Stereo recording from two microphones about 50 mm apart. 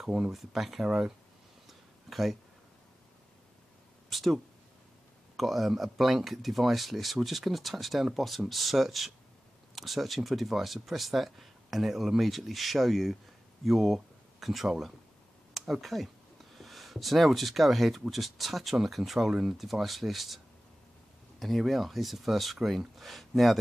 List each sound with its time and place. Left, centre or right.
0.0 s speech: centre
0.8 s speech: centre
1.7 s a sound: centre
4.1 s speech: centre
21.4 s speech: centre